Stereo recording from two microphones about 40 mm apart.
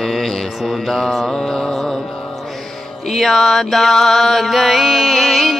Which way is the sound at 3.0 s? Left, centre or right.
Centre.